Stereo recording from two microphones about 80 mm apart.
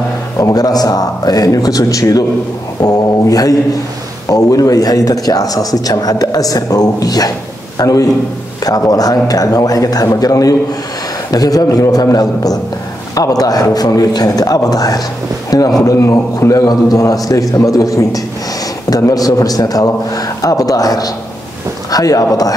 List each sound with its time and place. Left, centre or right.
0.4 s speech: left